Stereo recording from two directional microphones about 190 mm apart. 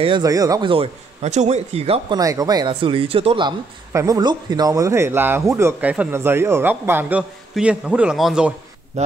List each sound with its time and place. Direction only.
0.0 s a man's voice: 20° right (ahead or behind)
2.1 s speech: 20° right (ahead or behind); by 8.5 s 5° right (ahead or behind)
9.0 s a man's voice: 35° right (ahead or behind)